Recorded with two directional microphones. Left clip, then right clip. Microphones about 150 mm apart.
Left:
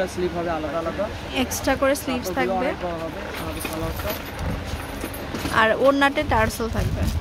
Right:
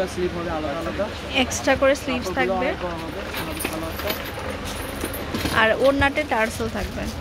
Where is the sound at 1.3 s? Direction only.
Centre (ahead or behind).